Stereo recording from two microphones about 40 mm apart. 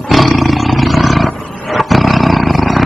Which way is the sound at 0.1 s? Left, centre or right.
Centre.